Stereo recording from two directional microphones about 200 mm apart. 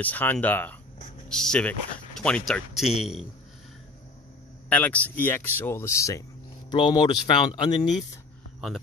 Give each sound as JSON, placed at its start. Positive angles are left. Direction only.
{"t": 0.0, "sound": "speech", "side_deg": 10}
{"t": 4.6, "sound": "speech", "side_deg": 5}